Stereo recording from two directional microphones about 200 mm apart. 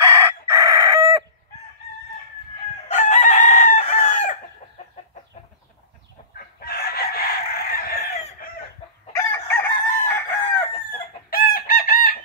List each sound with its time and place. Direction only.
0.0 s chicken: 15° right (ahead or behind)
3.0 s chicken: 35° left (ahead or behind)
6.3 s chicken: 50° left (ahead or behind)
9.1 s chicken: 10° left (ahead or behind)
11.0 s chicken: 50° left (ahead or behind)